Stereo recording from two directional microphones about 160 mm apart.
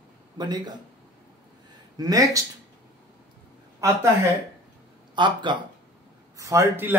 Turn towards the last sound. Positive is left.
turn(degrees=-15)  # may be behind; listen again after turning